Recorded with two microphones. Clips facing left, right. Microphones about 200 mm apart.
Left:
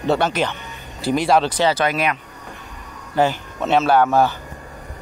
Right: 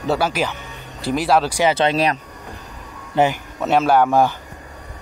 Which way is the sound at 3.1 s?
20° right (ahead or behind).